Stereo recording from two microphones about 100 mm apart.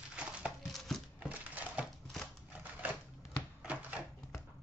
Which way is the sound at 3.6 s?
15° right (ahead or behind).